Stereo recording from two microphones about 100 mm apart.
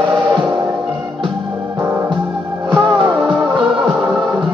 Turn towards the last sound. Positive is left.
turn(degrees=-50)  # may be behind; listen again after turning